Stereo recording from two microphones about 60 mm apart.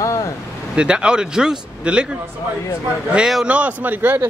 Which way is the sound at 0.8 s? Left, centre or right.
Centre.